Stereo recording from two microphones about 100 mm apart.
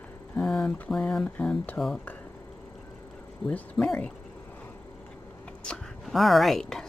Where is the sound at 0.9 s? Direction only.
5° left (ahead or behind).